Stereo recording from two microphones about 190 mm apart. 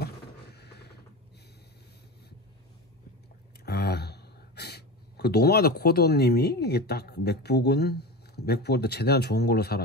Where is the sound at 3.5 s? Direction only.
60° left (ahead or behind).